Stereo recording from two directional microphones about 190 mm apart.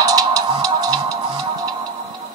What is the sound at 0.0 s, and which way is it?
Music, 20° right (ahead or behind).